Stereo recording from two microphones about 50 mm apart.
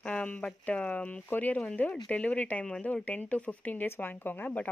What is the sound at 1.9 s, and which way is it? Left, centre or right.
Speech, left.